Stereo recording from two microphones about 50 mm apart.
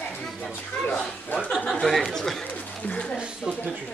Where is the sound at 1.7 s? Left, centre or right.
Centre.